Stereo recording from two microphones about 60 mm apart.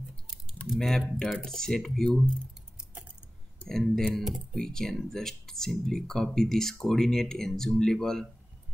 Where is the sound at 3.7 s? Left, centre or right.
Centre.